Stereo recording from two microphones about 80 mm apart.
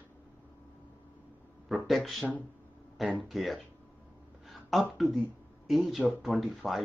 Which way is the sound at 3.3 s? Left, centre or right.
Centre.